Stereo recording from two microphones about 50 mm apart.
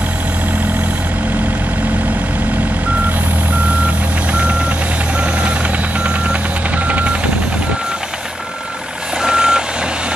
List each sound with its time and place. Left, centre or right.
3.8 s vehicle: right
6.9 s vehicle: right
9.2 s reversing beeps: centre